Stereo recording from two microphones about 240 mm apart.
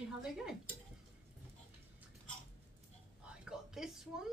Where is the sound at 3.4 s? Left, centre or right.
Centre.